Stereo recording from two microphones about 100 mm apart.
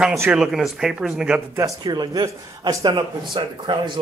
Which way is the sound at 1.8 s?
45° right (ahead or behind).